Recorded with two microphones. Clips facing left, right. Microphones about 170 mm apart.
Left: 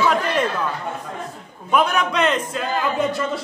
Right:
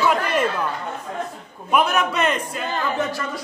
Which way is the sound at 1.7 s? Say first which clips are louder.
Left 1 dB; 5° right (ahead or behind).